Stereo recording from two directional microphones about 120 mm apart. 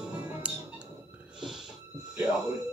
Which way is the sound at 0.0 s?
10° right (ahead or behind).